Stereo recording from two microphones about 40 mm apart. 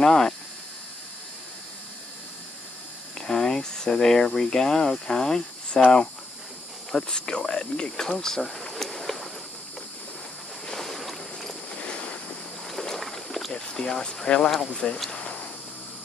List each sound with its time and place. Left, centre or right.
0.0 s speech: centre
3.2 s speech: centre
6.9 s speech: centre
8.7 s a sound: centre
10.7 s boat: centre
11.7 s boat: left
12.6 s boat: centre
13.5 s speech: centre
15.0 s cricket: left